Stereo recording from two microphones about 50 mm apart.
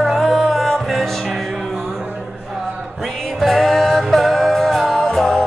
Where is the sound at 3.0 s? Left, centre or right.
Centre.